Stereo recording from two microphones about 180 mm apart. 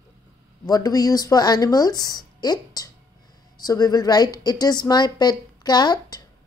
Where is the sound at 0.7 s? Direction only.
20° left (ahead or behind).